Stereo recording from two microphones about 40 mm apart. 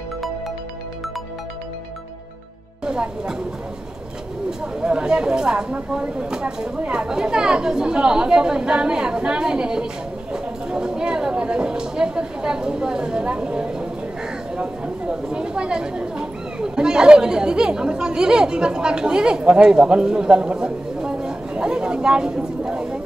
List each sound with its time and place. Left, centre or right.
2.8 s a woman's voice: right
4.5 s speech: right
22.6 s a sound: centre